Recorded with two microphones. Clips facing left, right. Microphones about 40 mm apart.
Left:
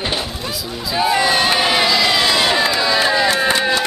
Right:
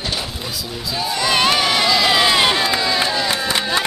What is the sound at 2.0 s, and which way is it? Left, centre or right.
Speech, centre.